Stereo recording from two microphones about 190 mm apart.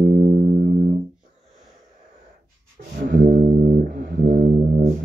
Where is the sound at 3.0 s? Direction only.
45° right (ahead or behind).